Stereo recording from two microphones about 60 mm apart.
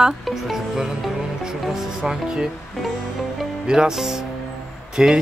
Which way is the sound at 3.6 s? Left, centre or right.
Centre.